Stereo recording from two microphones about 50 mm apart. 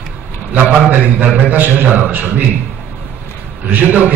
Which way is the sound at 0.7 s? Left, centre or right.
Right.